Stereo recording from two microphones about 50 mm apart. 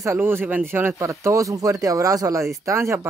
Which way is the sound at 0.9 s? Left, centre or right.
Right.